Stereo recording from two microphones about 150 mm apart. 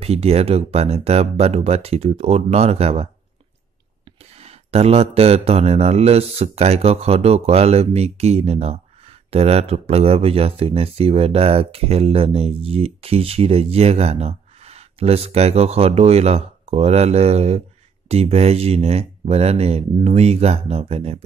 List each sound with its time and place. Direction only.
0.0 s a man's voice: 40° right (ahead or behind)
4.4 s a man's voice: 45° right (ahead or behind)